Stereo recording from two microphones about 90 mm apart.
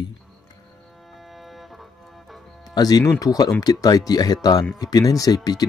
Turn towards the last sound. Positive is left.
turn(degrees=45)  # may be behind; listen again after turning